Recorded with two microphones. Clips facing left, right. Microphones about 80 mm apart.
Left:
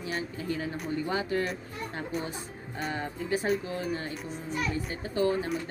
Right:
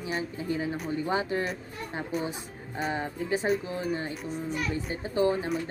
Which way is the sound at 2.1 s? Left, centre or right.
Centre.